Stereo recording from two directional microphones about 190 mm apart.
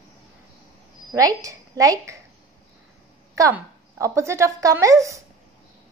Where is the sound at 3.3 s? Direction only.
15° right (ahead or behind).